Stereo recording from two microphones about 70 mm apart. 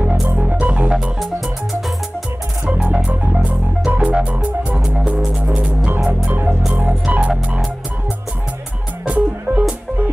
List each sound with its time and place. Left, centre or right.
0.4 s music: centre
0.9 s music: centre
2.8 s music: centre
6.6 s music: centre
7.1 s music: centre
9.0 s music: right